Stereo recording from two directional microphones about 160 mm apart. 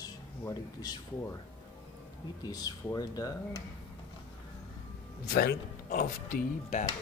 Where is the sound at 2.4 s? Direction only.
25° left (ahead or behind).